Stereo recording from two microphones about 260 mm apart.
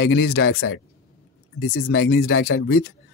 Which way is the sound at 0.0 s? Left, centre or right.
Left.